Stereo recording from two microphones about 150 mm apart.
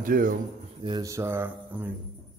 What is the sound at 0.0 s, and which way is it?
Speech, 70° right (ahead or behind).